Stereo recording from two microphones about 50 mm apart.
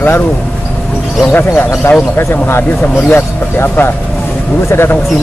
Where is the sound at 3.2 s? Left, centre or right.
Left.